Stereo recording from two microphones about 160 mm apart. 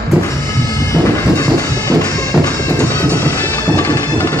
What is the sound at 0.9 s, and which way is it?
Music, 20° left (ahead or behind).